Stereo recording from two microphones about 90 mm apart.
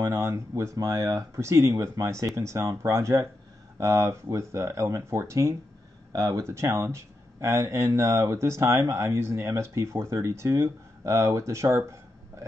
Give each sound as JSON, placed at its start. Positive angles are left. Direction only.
{"t": 0.0, "sound": "speech", "side_deg": -35}